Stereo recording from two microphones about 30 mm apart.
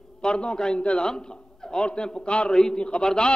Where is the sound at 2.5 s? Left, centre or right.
Left.